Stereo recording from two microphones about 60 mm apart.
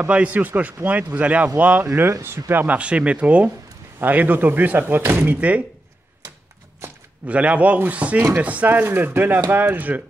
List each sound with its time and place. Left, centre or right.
0.1 s speech: right
2.2 s speech: right
2.5 s speech: right
7.2 s speech: right